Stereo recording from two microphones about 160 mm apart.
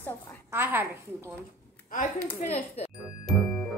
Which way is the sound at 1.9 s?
45° left (ahead or behind).